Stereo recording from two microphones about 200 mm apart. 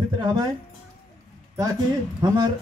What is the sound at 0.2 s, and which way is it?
Speech, 20° right (ahead or behind).